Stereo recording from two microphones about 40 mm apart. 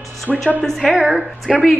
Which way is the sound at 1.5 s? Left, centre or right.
Centre.